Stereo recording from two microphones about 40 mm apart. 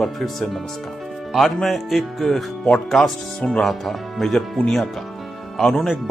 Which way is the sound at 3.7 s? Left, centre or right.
Centre.